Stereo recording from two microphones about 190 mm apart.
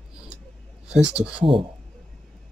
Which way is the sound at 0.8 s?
5° right (ahead or behind).